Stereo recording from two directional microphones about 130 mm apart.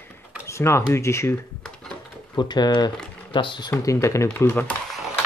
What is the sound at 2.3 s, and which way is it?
Speech, 35° left (ahead or behind).